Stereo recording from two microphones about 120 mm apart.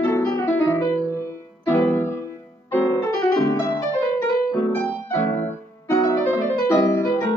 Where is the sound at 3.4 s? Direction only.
25° left (ahead or behind).